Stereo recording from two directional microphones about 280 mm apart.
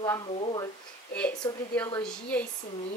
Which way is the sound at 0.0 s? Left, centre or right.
Centre.